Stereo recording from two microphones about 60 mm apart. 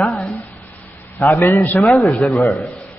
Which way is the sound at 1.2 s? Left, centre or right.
Left.